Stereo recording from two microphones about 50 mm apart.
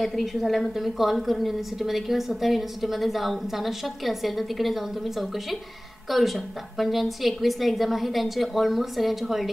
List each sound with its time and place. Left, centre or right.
0.0 s a woman's voice: centre